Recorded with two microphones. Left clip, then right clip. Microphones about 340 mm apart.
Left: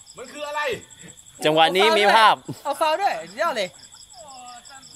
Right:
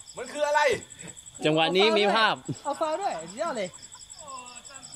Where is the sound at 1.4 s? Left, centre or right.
Left.